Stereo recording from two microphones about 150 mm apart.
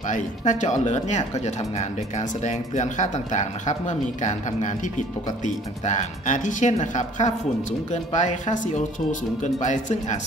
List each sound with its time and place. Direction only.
0.1 s speech: 55° left (ahead or behind)